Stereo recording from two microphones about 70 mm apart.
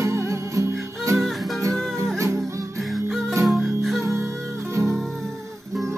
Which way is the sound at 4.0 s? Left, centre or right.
Right.